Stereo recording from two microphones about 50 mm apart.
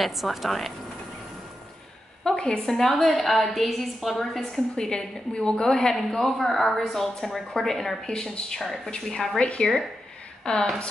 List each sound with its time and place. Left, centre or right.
0.0 s a woman's voice: centre
2.2 s a woman's voice: centre
4.5 s a woman's voice: centre
5.9 s a woman's voice: centre
8.9 s a woman's voice: centre